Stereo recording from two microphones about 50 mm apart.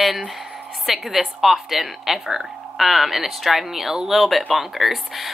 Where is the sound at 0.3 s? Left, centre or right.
Centre.